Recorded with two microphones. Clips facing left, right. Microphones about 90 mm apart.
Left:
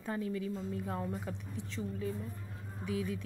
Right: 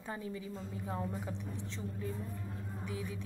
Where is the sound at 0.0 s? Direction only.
15° right (ahead or behind).